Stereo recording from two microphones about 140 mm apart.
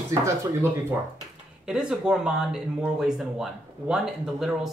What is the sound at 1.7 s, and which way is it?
Speech, 5° right (ahead or behind).